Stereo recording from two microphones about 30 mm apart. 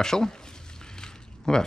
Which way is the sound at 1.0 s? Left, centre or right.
Left.